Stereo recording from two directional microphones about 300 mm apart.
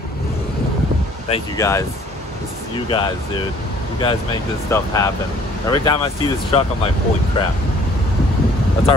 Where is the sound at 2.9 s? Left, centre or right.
Centre.